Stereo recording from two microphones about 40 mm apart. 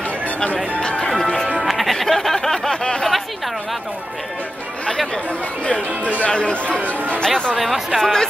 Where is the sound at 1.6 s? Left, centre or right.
Centre.